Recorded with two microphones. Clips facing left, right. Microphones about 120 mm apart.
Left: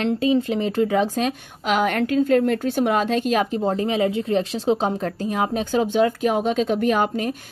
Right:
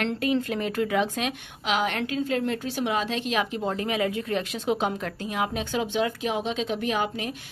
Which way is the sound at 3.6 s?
30° left (ahead or behind).